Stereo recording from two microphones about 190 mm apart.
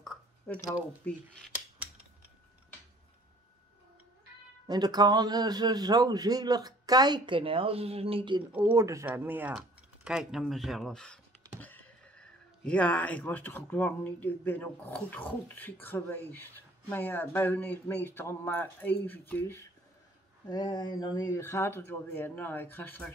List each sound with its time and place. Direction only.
0.0 s a sound: centre (ahead or behind)
4.6 s speech: 20° right (ahead or behind)
8.5 s speech: 10° right (ahead or behind); by 23.1 s 10° left (ahead or behind)